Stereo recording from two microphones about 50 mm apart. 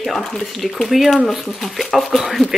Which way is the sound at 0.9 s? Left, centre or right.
Centre.